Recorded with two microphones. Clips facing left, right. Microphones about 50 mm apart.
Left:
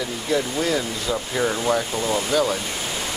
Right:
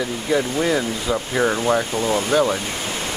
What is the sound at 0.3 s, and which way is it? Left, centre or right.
Speech, centre.